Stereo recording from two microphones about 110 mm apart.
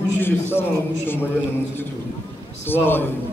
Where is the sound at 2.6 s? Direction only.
20° left (ahead or behind).